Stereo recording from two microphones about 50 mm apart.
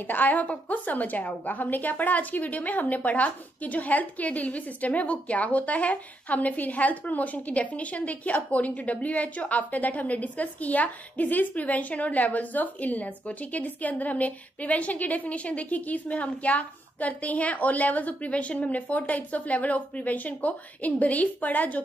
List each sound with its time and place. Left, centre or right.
0.0 s a woman's voice: left